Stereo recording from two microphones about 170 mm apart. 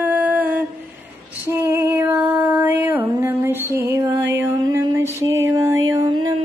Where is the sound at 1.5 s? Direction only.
15° right (ahead or behind).